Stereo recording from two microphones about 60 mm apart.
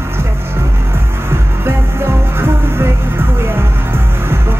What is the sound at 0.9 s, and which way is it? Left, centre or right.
Music, right.